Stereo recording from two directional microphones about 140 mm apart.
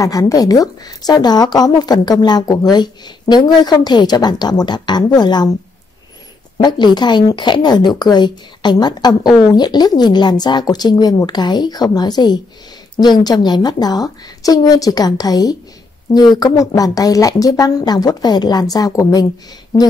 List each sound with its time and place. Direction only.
0.0 s a woman's voice: 25° left (ahead or behind)
6.6 s a woman's voice: 30° left (ahead or behind)